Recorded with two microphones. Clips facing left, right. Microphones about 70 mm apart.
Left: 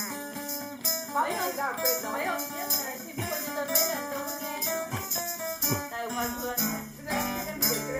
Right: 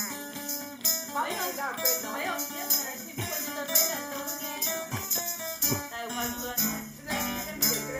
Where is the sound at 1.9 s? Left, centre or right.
Left.